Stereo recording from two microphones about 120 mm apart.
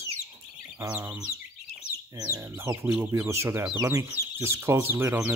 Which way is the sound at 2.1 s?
30° right (ahead or behind).